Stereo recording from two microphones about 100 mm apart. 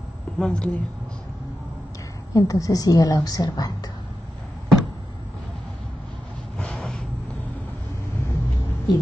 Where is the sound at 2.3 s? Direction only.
35° left (ahead or behind).